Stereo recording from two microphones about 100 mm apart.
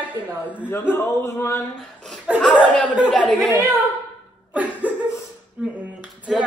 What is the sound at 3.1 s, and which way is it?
Speech, 10° left (ahead or behind).